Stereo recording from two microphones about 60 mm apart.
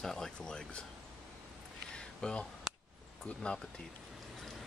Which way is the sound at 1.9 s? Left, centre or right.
Centre.